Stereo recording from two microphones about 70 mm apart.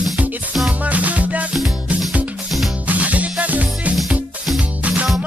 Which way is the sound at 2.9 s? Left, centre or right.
Right.